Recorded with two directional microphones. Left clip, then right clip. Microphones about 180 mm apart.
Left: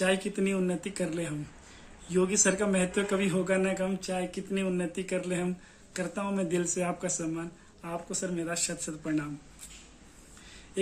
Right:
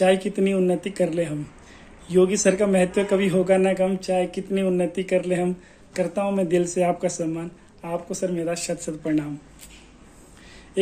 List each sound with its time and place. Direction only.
0.0 s a man's voice: 15° left (ahead or behind)